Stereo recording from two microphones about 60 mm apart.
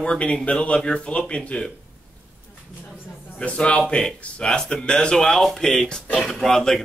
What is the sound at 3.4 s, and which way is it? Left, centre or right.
A man's voice, centre.